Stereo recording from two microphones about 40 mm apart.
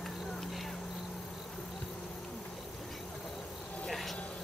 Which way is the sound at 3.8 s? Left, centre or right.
Centre.